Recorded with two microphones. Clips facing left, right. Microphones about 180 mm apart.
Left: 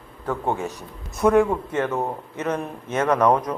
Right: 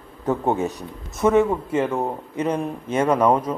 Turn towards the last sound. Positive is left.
turn(degrees=-10)  # may be behind; listen again after turning